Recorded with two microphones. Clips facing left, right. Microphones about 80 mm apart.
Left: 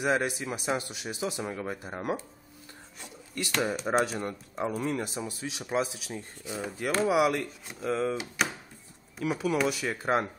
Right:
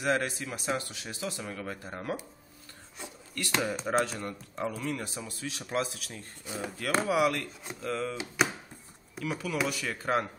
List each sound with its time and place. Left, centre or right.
0.0 s speech: centre
3.4 s speech: centre